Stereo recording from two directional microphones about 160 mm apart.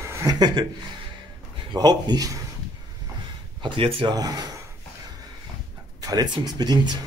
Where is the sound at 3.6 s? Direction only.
35° right (ahead or behind).